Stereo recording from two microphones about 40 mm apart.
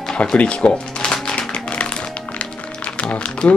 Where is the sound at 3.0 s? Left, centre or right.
Left.